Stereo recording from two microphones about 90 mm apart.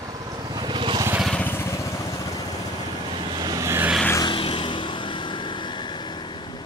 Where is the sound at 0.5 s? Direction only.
60° right (ahead or behind).